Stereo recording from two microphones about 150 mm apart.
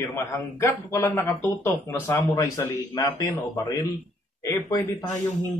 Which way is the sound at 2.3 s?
20° left (ahead or behind).